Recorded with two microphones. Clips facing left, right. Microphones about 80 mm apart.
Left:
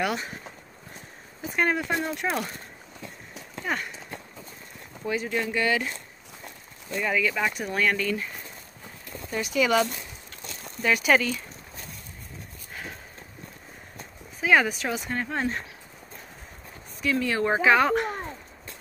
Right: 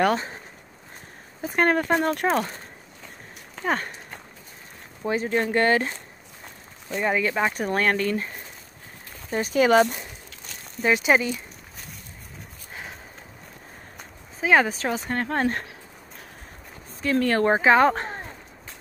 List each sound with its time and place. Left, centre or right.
0.0 s speech: right
1.4 s speech: right
2.2 s speech: right
3.6 s speech: right
5.0 s speech: right
7.6 s speech: right
9.3 s speech: right
10.8 s speech: right
14.4 s speech: right
15.1 s speech: right
17.2 s speech: right
17.5 s speech: right